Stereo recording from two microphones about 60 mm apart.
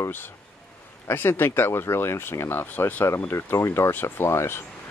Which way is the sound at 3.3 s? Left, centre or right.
Left.